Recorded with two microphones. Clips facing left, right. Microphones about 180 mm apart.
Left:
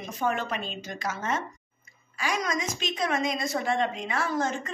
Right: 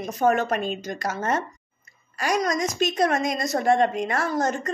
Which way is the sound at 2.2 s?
40° right (ahead or behind).